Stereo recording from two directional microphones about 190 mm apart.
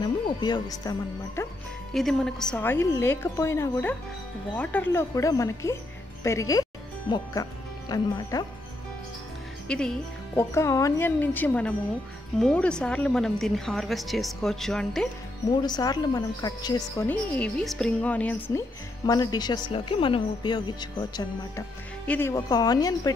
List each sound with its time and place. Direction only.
0.0 s a woman's voice: 20° left (ahead or behind)
2.0 s a woman's voice: centre (ahead or behind); by 8.5 s 20° left (ahead or behind)
9.7 s speech: 5° left (ahead or behind)
10.5 s a woman's voice: 15° left (ahead or behind)
15.6 s a woman's voice: 20° left (ahead or behind)
17.1 s a woman's voice: 5° left (ahead or behind)
19.0 s a woman's voice: 20° left (ahead or behind)
22.0 s a woman's voice: 10° left (ahead or behind)